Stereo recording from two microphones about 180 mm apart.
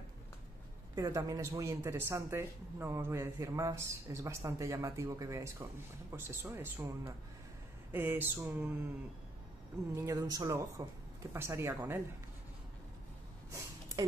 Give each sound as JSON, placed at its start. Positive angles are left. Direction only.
{"t": 0.9, "sound": "a woman's voice", "side_deg": -20}
{"t": 7.9, "sound": "speech", "side_deg": -10}
{"t": 9.9, "sound": "a woman's voice", "side_deg": -20}
{"t": 13.5, "sound": "a sound", "side_deg": -15}